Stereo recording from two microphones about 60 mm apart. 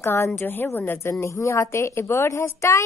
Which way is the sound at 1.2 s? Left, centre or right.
Left.